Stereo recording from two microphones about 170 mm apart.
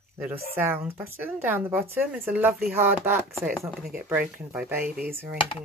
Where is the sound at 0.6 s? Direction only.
10° right (ahead or behind).